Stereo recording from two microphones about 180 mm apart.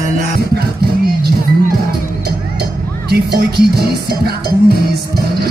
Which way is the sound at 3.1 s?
65° right (ahead or behind).